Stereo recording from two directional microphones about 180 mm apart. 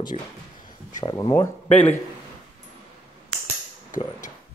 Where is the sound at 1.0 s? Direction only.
25° left (ahead or behind).